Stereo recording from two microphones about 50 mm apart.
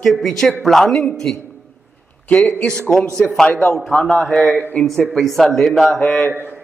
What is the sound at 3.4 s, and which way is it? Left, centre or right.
Speech, centre.